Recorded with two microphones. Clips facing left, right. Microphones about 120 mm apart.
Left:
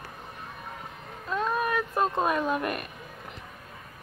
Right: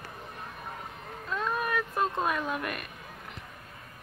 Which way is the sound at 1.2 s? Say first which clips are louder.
Left 4 dB; 20° left (ahead or behind).